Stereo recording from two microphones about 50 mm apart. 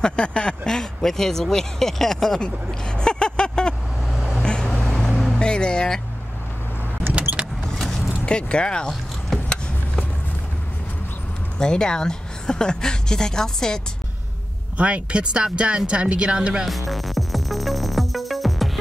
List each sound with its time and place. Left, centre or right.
0.0 s speech: centre
3.0 s vehicle: centre
4.9 s vehicle: centre
5.4 s music: centre
7.2 s vehicle: right
7.7 s vehicle: centre
8.3 s speech: centre
9.3 s vehicle: centre
11.5 s speech: centre
14.8 s speech: right
16.6 s music: centre